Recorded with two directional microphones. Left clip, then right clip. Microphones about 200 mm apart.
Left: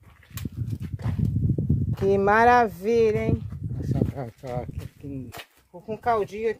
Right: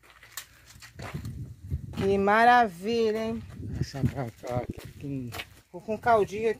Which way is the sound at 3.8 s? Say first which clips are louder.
Left 4 dB; 10° left (ahead or behind).